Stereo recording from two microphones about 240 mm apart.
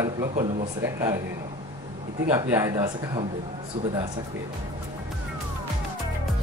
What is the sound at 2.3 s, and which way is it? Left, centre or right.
Speech, centre.